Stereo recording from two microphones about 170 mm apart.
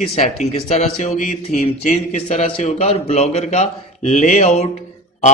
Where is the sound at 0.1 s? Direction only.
40° left (ahead or behind).